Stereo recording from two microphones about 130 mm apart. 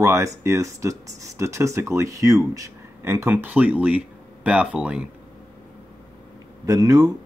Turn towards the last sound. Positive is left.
turn(degrees=-25)  # may be behind; listen again after turning